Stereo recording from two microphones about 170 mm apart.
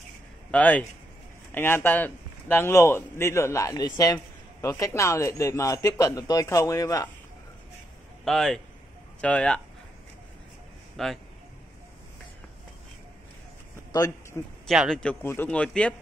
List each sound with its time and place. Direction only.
0.5 s a man's voice: 10° left (ahead or behind)
8.3 s a man's voice: centre (ahead or behind)
11.0 s speech: centre (ahead or behind)
13.9 s speech: 20° left (ahead or behind)
14.7 s a man's voice: centre (ahead or behind)